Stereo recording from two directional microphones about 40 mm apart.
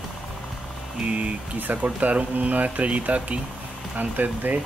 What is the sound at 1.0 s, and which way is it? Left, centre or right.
Speech, right.